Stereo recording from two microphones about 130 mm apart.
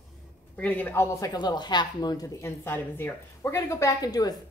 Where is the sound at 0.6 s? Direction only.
10° left (ahead or behind).